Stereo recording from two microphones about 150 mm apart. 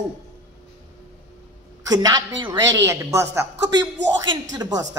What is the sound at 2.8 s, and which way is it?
A woman's voice, 15° right (ahead or behind).